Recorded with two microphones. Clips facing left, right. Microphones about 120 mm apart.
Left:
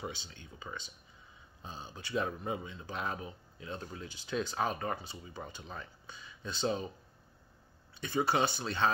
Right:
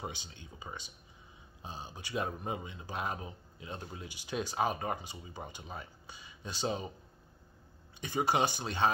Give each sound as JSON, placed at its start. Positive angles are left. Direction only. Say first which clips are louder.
{"t": 0.1, "sound": "speech", "louder": "left 1 dB", "side_deg": -15}
{"t": 1.6, "sound": "a sound", "louder": "right 1 dB", "side_deg": -15}
{"t": 2.3, "sound": "a man's voice", "louder": "left 1 dB", "side_deg": -20}
{"t": 8.0, "sound": "speech", "louder": "even", "side_deg": -15}